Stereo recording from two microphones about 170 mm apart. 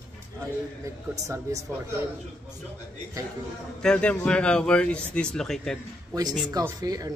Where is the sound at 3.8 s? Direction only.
5° left (ahead or behind).